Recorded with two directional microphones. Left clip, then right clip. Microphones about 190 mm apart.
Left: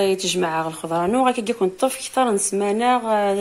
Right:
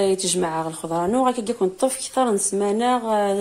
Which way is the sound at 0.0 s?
10° right (ahead or behind).